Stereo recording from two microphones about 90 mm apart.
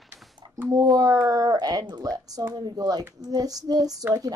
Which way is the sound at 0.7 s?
45° right (ahead or behind).